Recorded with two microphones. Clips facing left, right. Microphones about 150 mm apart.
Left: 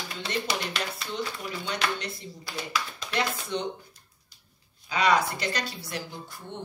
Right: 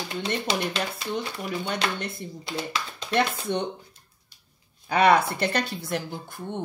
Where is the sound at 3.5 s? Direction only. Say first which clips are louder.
Right 4 dB; 65° right (ahead or behind).